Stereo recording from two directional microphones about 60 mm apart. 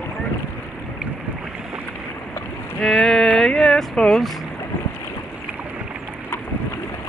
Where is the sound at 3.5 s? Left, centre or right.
Centre.